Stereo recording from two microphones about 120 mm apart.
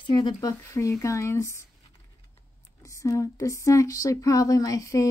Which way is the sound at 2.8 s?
25° left (ahead or behind).